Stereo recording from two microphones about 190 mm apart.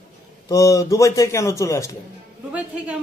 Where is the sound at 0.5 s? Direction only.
15° left (ahead or behind).